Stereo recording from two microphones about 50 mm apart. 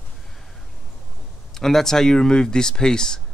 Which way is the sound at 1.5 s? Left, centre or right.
Centre.